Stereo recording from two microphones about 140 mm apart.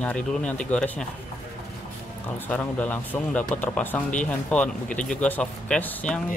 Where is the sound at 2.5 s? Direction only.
10° left (ahead or behind).